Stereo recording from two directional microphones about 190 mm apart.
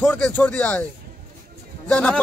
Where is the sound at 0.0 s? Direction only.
10° left (ahead or behind).